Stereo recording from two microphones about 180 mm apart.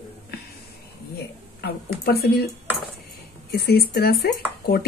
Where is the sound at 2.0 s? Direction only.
60° left (ahead or behind).